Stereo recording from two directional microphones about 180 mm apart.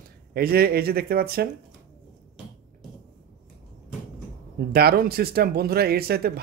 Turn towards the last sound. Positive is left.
turn(degrees=-60)  # may be behind; listen again after turning